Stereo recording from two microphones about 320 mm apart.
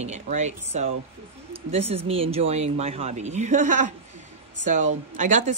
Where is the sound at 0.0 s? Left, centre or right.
Right.